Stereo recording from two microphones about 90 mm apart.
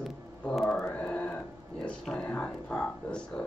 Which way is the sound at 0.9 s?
15° left (ahead or behind).